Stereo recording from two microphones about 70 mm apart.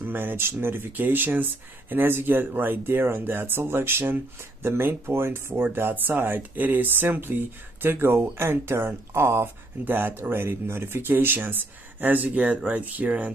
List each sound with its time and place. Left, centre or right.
0.0 s speech: right